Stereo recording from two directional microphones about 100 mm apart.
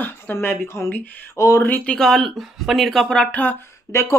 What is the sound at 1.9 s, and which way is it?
Speech, 5° left (ahead or behind).